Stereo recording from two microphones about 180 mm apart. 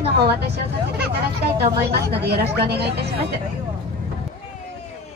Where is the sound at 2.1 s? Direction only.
65° right (ahead or behind).